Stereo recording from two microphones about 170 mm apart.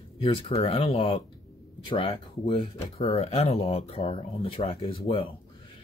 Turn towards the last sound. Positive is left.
turn(degrees=30)  # may be behind; listen again after turning